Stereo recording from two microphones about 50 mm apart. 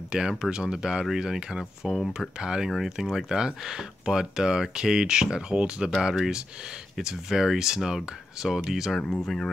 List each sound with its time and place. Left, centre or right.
0.1 s speech: centre
2.1 s speech: centre
9.0 s speech: centre